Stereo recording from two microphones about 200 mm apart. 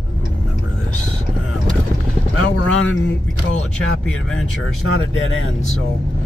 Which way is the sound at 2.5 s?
90° left.